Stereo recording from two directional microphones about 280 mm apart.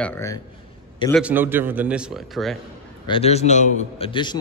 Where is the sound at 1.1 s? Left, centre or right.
Centre.